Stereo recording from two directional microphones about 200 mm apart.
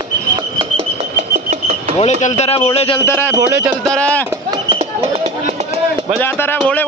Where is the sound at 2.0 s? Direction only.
35° left (ahead or behind).